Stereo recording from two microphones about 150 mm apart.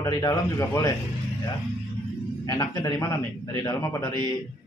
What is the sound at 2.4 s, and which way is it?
Speech, 25° left (ahead or behind).